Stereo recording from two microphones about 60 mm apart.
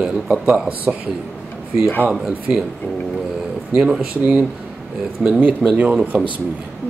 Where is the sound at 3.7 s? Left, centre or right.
Centre.